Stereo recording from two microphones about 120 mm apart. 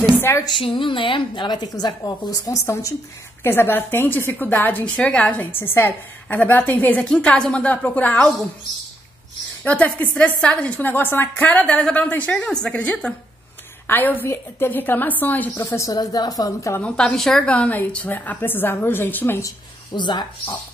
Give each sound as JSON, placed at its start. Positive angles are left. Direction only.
{"t": 0.5, "sound": "a woman's voice", "side_deg": 45}
{"t": 9.7, "sound": "a woman's voice", "side_deg": 10}
{"t": 15.6, "sound": "a woman's voice", "side_deg": 25}
{"t": 16.8, "sound": "a woman's voice", "side_deg": 5}
{"t": 19.9, "sound": "a woman's voice", "side_deg": 40}